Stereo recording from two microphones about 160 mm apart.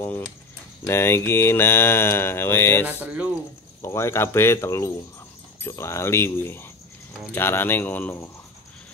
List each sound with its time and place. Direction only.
0.8 s mantra: 15° left (ahead or behind)
2.9 s speech: 10° right (ahead or behind)
3.8 s mantra: 15° left (ahead or behind)